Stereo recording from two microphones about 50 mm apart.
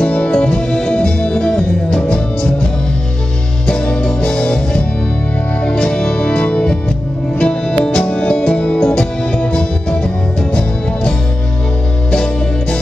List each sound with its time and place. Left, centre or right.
0.0 s music: left
3.6 s music: centre